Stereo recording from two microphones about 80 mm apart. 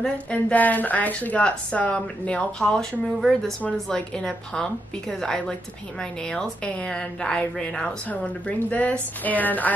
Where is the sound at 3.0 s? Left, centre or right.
Centre; by 9.7 s left.